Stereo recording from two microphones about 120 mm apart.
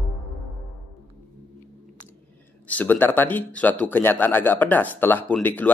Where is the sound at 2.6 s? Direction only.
15° left (ahead or behind).